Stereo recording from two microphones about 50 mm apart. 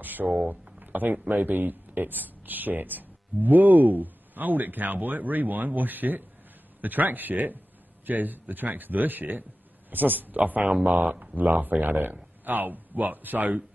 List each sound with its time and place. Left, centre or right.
0.0 s speech: right
0.5 s a sound: right
1.3 s speech: right